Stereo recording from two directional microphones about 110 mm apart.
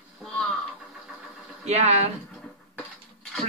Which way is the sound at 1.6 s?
90° right.